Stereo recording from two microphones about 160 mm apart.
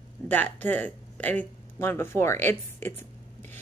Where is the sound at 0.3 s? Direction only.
10° left (ahead or behind).